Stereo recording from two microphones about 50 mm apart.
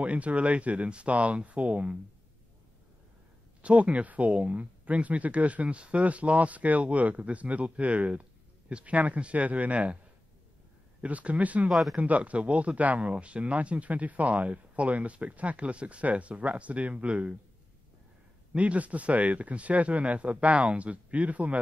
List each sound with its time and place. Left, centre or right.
0.0 s speech: right
3.6 s speech: right
11.0 s speech: right
18.5 s speech: right